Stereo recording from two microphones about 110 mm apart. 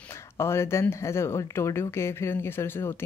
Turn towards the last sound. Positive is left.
turn(degrees=20)  # may be behind; listen again after turning